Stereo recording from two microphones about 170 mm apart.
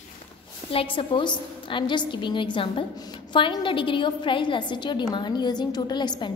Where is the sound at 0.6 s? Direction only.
30° left (ahead or behind).